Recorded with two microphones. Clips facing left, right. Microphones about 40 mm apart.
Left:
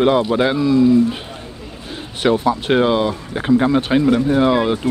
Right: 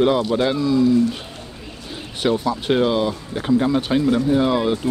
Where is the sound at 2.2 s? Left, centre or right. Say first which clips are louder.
Left 4 dB; centre.